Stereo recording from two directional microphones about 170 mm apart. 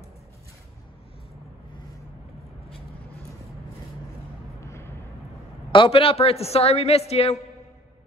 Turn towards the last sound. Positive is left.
turn(degrees=40)  # may be behind; listen again after turning